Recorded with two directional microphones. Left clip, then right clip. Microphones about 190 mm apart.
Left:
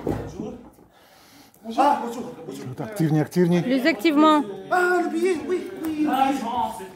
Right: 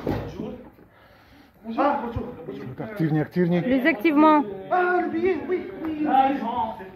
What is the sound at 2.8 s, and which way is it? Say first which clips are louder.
Speech: left 2 dB; 60° left (ahead or behind).